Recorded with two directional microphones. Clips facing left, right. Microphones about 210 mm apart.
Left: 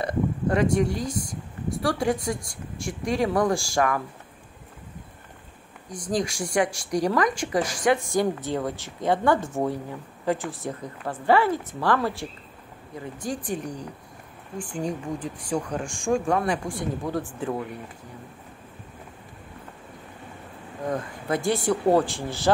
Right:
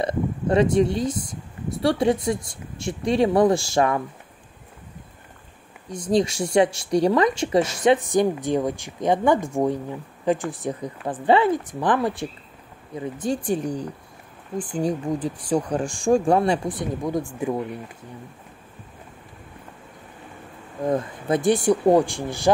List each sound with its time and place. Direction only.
0.0 s speech: 25° right (ahead or behind)
5.9 s speech: 25° right (ahead or behind)
20.9 s speech: 20° right (ahead or behind)